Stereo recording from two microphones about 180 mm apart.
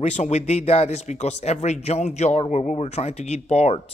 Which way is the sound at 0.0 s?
40° left (ahead or behind).